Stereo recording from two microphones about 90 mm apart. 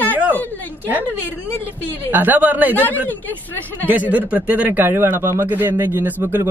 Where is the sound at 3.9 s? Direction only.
15° right (ahead or behind).